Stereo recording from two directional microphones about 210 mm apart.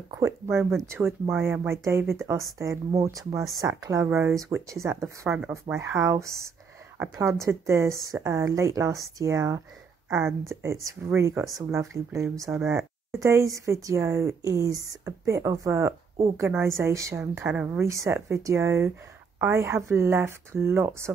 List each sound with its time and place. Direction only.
0.1 s speech: 15° right (ahead or behind)
10.0 s a woman's voice: 5° right (ahead or behind)